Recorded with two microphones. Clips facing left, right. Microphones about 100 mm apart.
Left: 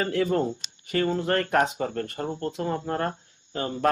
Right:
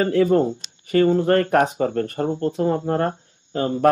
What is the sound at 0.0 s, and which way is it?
Speech, 40° right (ahead or behind).